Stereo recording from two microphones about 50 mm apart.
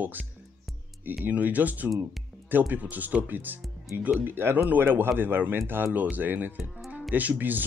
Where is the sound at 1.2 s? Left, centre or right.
Right.